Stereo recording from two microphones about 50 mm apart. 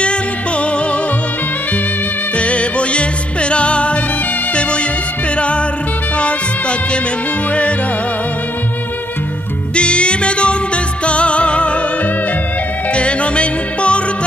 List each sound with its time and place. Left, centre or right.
0.0 s music: left
2.3 s music: left
9.8 s music: left